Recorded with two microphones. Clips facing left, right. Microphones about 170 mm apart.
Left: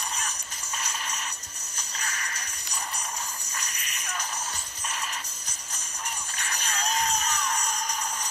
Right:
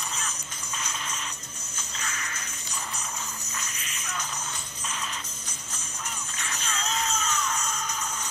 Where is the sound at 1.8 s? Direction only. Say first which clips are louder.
Even; 35° left (ahead or behind).